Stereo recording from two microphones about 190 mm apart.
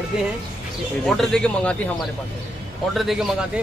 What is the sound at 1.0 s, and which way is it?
Speech, centre (ahead or behind).